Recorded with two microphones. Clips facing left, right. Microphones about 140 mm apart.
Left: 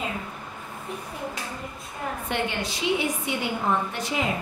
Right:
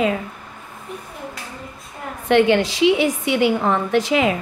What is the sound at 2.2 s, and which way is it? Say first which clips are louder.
A woman's voice: right 16 dB; 90° right.